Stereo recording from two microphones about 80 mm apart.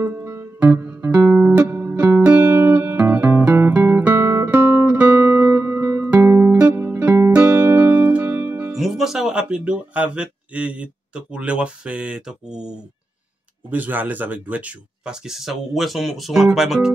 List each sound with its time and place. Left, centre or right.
0.0 s guitar: right
1.5 s music: centre
3.0 s guitar: right
6.2 s music: right
8.7 s speech: centre
13.7 s speech: right; by 16.9 s centre